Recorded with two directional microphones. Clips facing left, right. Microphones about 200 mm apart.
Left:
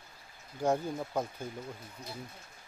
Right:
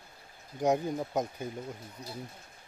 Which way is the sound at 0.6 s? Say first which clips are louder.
Right 2 dB; 15° right (ahead or behind).